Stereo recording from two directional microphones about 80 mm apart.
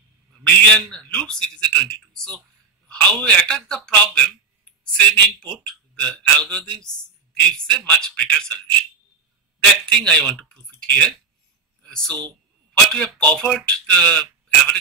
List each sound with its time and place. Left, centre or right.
0.4 s a man's voice: centre
9.8 s a man's voice: centre